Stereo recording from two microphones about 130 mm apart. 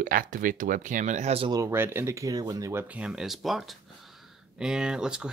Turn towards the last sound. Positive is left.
turn(degrees=-5)  # may be behind; listen again after turning